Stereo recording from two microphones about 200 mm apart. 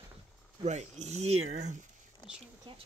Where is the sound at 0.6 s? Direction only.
35° right (ahead or behind).